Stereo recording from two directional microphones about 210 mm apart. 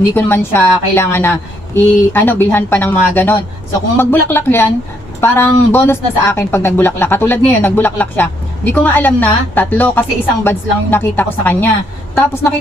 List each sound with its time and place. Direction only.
0.1 s speech: 10° left (ahead or behind)